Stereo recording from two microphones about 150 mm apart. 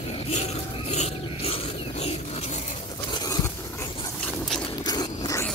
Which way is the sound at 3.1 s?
30° left (ahead or behind).